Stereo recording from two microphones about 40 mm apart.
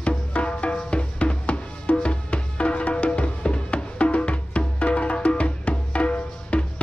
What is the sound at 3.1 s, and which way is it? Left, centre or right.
Music, left.